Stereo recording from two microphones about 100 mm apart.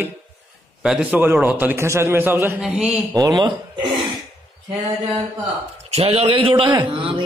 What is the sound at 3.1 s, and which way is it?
Speech, 40° right (ahead or behind).